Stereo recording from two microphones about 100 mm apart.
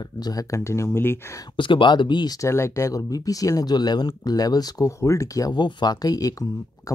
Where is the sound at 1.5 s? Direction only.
55° left (ahead or behind).